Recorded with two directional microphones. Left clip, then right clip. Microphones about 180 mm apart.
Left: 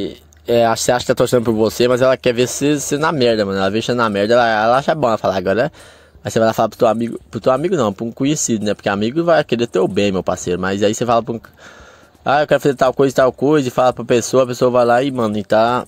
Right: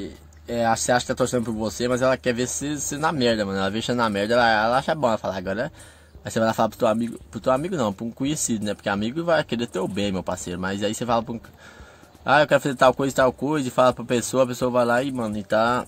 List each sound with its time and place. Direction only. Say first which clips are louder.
0.0 s speech: left 12 dB; 45° left (ahead or behind)